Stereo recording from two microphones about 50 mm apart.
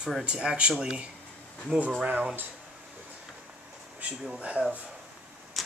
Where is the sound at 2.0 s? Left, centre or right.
Right.